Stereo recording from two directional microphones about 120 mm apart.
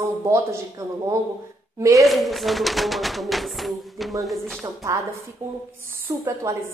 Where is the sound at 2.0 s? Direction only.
Centre (ahead or behind).